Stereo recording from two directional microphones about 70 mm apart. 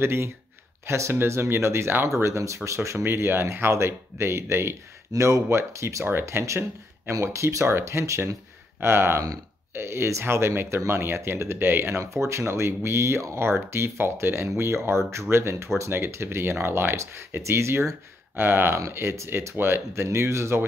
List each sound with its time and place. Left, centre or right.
0.0 s speech: right
3.1 s speech: right
8.7 s speech: right
12.0 s speech: right